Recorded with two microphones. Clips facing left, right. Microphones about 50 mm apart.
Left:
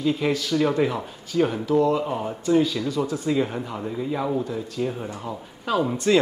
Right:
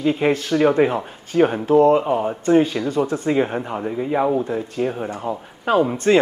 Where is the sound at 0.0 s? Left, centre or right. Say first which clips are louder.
Right 4 dB; right.